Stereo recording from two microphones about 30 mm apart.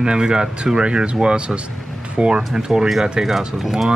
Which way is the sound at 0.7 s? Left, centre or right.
Right.